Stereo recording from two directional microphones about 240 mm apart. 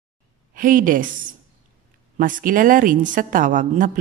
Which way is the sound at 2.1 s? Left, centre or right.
Right.